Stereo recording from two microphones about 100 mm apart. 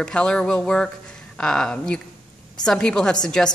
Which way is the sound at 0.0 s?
10° left (ahead or behind).